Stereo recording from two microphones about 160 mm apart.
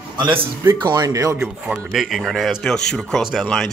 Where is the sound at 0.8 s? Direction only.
25° right (ahead or behind).